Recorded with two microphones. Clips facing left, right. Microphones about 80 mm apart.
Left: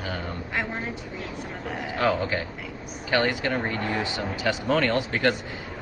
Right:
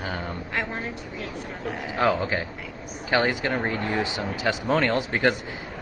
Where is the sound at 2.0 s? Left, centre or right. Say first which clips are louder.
Right 1 dB; centre.